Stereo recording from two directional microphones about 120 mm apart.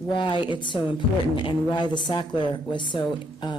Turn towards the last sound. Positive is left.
turn(degrees=40)  # may be behind; listen again after turning